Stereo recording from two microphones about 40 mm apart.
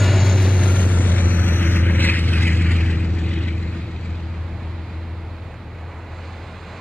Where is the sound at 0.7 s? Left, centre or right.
Left.